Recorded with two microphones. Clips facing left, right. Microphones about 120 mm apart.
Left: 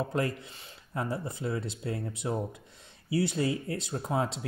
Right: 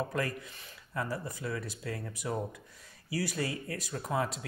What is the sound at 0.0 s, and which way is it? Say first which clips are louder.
Speech: left 3 dB; 25° left (ahead or behind).